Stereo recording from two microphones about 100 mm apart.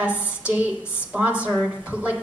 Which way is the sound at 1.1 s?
10° right (ahead or behind).